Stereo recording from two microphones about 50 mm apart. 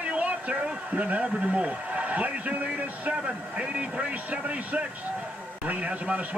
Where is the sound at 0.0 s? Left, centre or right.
Right.